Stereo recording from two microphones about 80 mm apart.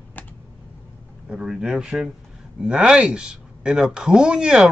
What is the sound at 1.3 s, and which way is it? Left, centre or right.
Speech, centre.